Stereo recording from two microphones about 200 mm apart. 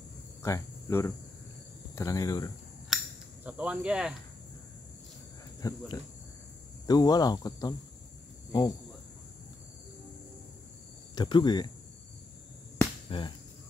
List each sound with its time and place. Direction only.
0.4 s speech: 15° left (ahead or behind)
2.9 s insect: centre (ahead or behind)
3.4 s speech: 5° right (ahead or behind)
5.6 s speech: 15° left (ahead or behind)
11.1 s speech: 20° left (ahead or behind)
13.1 s speech: 25° left (ahead or behind)